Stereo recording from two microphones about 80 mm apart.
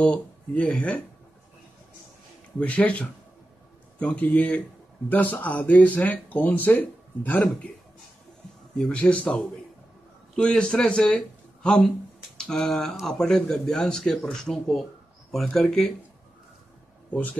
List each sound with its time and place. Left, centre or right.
0.0 s speech: centre
2.6 s a man's voice: centre
8.7 s a man's voice: centre
17.1 s speech: centre